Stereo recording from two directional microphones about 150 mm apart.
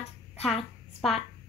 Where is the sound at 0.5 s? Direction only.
Centre (ahead or behind).